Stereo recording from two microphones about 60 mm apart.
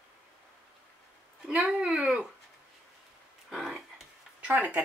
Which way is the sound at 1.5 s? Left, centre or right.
Centre.